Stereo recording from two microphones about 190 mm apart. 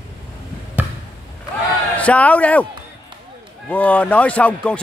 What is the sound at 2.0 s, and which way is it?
Speech, 5° left (ahead or behind).